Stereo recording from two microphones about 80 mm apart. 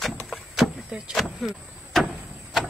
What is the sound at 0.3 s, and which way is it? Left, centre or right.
Vehicle, centre.